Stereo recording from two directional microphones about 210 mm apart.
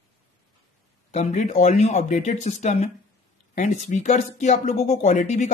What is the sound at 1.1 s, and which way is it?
Speech, 35° left (ahead or behind).